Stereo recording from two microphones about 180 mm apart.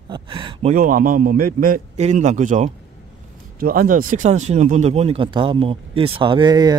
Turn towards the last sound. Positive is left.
turn(degrees=-20)  # may be behind; listen again after turning